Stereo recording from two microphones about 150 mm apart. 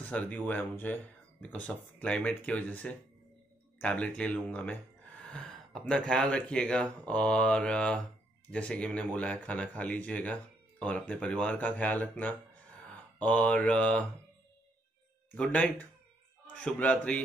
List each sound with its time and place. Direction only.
0.1 s speech: 10° left (ahead or behind)
15.3 s speech: 10° left (ahead or behind)